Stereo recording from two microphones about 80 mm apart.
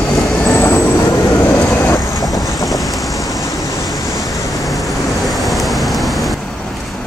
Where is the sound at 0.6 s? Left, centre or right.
Left.